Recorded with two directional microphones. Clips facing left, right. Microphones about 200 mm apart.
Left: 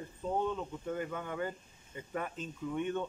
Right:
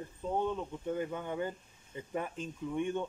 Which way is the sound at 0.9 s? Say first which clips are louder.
Right 3 dB; 20° right (ahead or behind).